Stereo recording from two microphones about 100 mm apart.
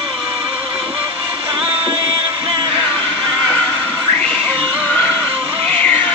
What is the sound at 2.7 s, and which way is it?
Music, 15° left (ahead or behind).